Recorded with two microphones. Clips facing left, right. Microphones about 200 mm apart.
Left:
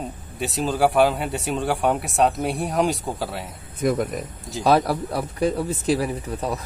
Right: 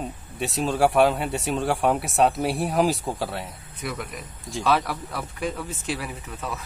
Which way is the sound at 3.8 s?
45° left (ahead or behind).